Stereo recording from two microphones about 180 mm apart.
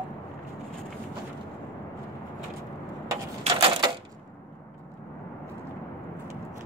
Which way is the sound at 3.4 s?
25° right (ahead or behind).